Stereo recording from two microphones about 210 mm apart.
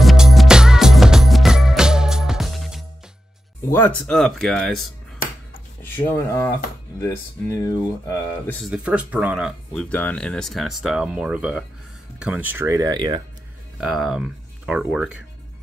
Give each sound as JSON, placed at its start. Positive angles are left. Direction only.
{"t": 0.0, "sound": "music", "side_deg": 0}
{"t": 4.0, "sound": "speech", "side_deg": 0}
{"t": 5.8, "sound": "speech", "side_deg": 10}
{"t": 8.6, "sound": "speech", "side_deg": -5}
{"t": 13.7, "sound": "speech", "side_deg": 0}